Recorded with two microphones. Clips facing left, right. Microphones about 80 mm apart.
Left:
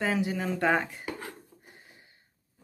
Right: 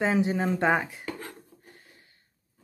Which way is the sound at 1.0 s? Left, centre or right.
Centre.